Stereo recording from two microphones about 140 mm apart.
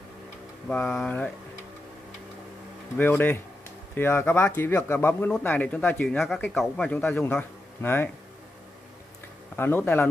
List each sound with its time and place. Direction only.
0.7 s speech: 5° left (ahead or behind)
3.0 s a man's voice: 15° left (ahead or behind)
9.6 s speech: 15° left (ahead or behind)